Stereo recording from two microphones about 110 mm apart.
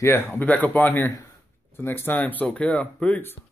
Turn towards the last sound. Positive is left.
turn(degrees=15)  # may be behind; listen again after turning